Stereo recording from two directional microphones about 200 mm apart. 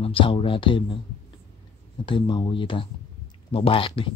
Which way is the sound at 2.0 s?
25° left (ahead or behind).